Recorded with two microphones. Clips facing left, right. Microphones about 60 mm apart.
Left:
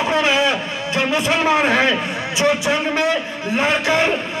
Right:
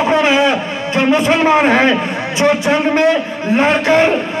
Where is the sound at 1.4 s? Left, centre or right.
Right.